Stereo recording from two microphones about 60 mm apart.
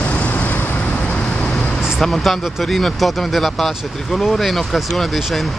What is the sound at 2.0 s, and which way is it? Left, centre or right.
Speech, centre.